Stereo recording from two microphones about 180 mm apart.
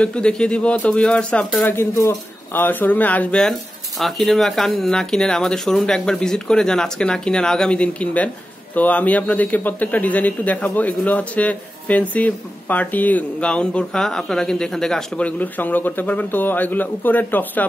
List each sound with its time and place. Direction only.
0.0 s speech: 5° left (ahead or behind)